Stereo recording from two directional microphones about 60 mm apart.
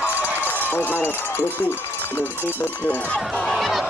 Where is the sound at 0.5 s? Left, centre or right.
Left.